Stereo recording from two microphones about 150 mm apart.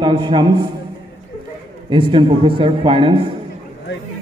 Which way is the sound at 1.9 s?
35° right (ahead or behind).